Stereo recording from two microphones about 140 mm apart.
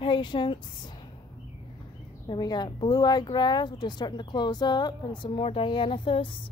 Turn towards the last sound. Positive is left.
turn(degrees=40)  # may be behind; listen again after turning